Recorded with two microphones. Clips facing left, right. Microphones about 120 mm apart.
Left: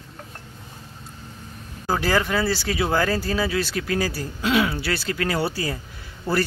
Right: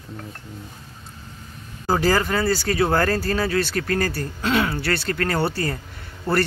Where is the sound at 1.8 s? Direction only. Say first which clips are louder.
Right 2 dB; 5° right (ahead or behind).